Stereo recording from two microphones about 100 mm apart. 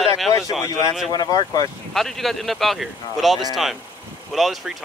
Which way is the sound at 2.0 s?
Centre (ahead or behind).